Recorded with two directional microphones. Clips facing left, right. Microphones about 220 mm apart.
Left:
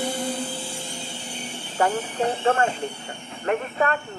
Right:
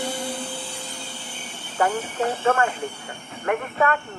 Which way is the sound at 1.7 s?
35° left (ahead or behind).